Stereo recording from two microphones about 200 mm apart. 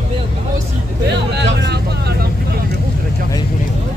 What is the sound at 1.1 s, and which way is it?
Vehicle, 60° right (ahead or behind).